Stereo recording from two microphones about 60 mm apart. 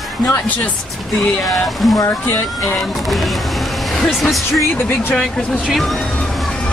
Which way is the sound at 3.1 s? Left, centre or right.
Centre.